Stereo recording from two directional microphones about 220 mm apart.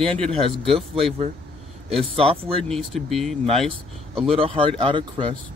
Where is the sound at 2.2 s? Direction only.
25° right (ahead or behind).